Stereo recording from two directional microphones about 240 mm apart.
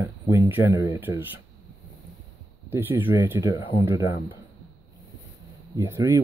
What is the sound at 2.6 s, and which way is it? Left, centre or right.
Speech, centre.